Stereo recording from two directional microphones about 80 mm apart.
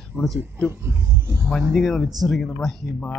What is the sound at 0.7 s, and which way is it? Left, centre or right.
Speech, right.